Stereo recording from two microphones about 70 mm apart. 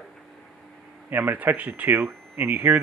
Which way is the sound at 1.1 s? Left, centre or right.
Right.